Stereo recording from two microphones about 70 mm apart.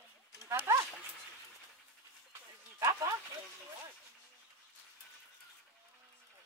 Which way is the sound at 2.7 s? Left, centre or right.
Right.